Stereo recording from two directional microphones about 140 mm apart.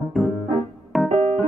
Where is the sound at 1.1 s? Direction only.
50° right (ahead or behind).